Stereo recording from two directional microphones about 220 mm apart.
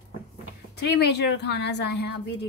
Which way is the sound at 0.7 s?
50° left (ahead or behind).